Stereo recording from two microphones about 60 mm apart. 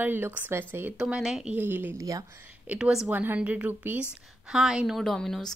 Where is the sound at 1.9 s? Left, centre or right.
Right.